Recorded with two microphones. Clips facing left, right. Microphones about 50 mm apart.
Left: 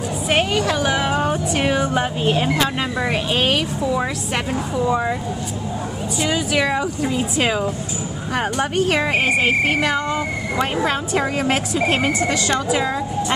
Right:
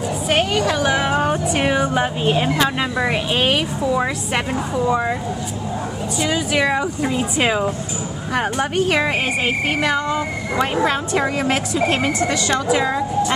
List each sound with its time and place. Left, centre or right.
0.3 s music: centre
0.9 s speech: centre
6.2 s a woman's voice: centre